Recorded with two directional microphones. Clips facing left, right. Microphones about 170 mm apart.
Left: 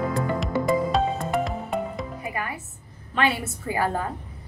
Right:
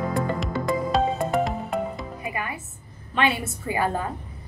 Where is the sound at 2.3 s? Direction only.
20° right (ahead or behind).